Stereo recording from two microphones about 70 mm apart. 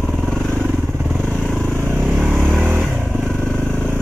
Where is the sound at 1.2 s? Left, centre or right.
Centre.